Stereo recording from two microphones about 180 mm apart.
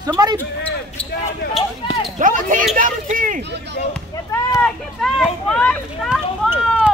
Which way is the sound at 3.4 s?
70° right (ahead or behind).